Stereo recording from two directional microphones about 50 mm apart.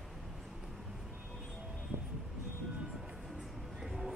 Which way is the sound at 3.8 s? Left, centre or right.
Centre.